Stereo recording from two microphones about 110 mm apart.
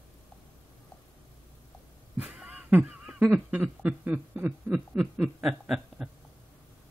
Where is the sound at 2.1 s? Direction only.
15° right (ahead or behind).